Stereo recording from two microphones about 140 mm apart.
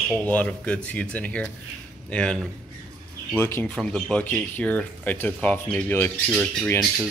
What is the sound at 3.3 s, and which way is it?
Speech, 15° left (ahead or behind).